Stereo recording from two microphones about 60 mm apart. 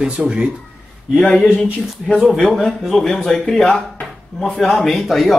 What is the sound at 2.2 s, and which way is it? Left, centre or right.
Speech, centre.